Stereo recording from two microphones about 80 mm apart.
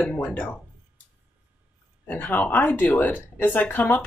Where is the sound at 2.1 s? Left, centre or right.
Left.